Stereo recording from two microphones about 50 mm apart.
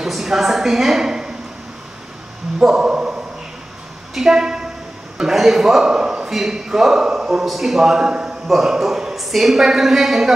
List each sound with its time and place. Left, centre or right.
0.0 s a man's voice: centre
2.6 s a man's voice: centre
7.4 s a man's voice: centre
8.5 s a woman's voice: centre